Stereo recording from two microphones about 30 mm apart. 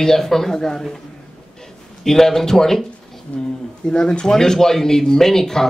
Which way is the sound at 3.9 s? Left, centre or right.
Left.